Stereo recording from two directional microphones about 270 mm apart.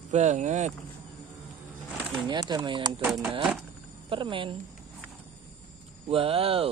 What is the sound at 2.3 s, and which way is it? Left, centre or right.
Speech, centre.